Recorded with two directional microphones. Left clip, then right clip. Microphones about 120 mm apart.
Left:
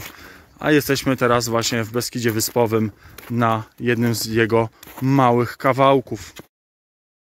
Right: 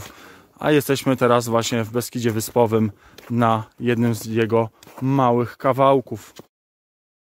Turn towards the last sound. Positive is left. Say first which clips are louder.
# left 1 dB
turn(degrees=-15)  # may be behind; listen again after turning